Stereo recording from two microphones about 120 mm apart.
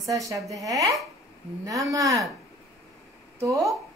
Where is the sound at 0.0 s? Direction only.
25° right (ahead or behind).